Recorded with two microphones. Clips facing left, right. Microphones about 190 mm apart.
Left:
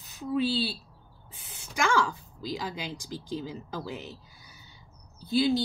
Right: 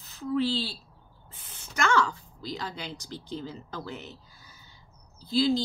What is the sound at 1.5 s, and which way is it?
Speech, 10° left (ahead or behind).